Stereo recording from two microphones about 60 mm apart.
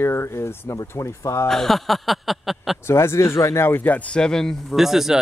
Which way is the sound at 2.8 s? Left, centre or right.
Left.